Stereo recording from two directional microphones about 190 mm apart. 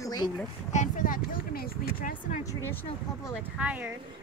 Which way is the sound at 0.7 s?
40° left (ahead or behind).